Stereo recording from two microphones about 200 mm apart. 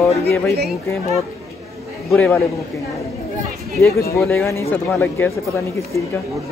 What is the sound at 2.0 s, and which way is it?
Speech, 5° left (ahead or behind).